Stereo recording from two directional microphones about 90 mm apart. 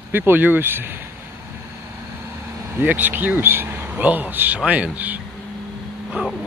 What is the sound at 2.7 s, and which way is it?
Speech, 20° right (ahead or behind).